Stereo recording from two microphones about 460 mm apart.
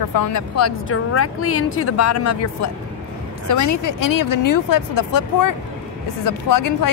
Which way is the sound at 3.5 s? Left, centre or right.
Left.